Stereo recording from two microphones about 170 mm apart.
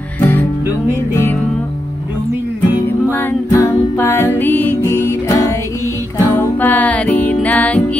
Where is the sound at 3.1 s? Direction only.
15° left (ahead or behind).